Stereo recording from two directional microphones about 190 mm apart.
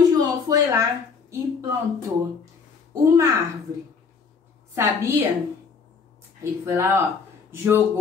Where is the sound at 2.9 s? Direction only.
15° right (ahead or behind).